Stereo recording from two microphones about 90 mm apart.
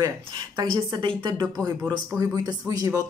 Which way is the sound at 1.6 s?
40° right (ahead or behind).